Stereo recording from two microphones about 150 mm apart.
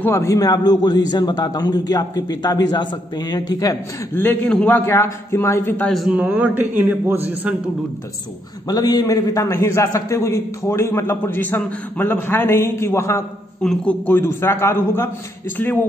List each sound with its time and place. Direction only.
0.0 s a man's voice: 15° left (ahead or behind)
4.1 s a man's voice: 15° left (ahead or behind)
5.9 s a man's voice: centre (ahead or behind)
8.6 s a man's voice: 25° left (ahead or behind)
13.6 s a man's voice: 5° left (ahead or behind)